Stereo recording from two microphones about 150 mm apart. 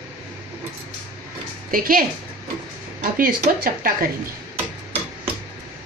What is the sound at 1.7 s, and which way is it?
Speech, 70° right (ahead or behind).